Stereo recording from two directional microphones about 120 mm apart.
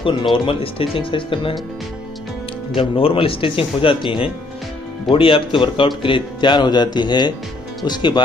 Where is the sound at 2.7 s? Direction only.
50° left (ahead or behind).